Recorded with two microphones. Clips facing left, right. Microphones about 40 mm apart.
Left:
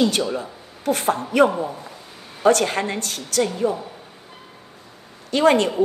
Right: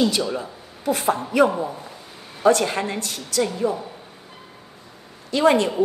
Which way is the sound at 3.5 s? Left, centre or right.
Left.